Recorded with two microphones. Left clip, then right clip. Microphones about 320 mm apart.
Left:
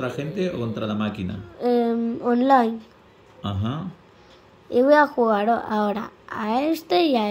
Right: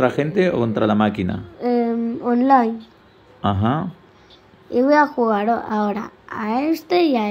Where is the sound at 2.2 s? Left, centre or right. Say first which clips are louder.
Right 2 dB; centre.